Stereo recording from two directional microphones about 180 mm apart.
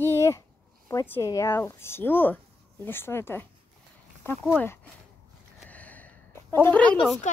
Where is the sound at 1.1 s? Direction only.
15° left (ahead or behind).